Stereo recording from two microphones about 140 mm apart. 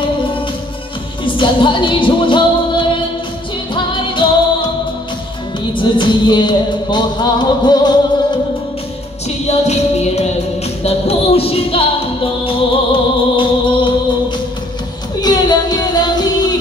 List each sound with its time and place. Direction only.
1.2 s music: 35° left (ahead or behind)
5.8 s music: 35° left (ahead or behind)
9.5 s music: 50° left (ahead or behind); by 13.9 s 35° left (ahead or behind)
15.1 s music: 30° left (ahead or behind)